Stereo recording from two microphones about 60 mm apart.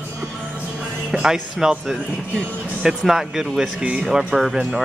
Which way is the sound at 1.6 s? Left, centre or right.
Centre.